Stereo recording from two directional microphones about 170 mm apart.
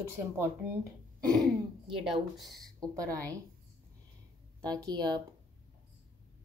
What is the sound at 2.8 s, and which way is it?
Speech, 20° right (ahead or behind).